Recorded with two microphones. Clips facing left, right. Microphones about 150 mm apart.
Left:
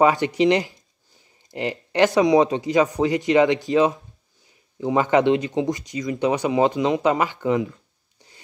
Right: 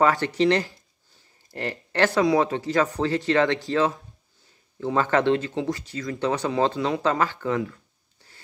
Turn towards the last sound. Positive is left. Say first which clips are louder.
# left 4 dB
turn(degrees=15)  # may be behind; listen again after turning